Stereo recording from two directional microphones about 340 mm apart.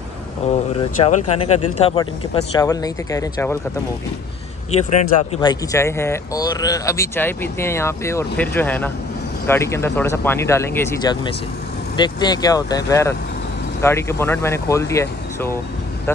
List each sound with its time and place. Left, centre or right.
0.4 s speech: centre
4.6 s speech: centre